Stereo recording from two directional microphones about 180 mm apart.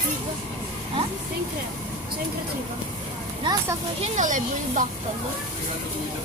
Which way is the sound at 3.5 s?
25° right (ahead or behind).